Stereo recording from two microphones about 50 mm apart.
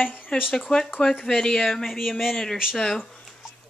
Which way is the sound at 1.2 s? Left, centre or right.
Centre.